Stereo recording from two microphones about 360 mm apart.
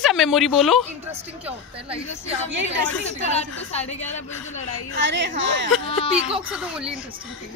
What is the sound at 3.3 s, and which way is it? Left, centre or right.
Speech, centre.